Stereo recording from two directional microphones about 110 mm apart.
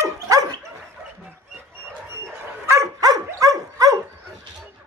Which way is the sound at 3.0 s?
35° right (ahead or behind).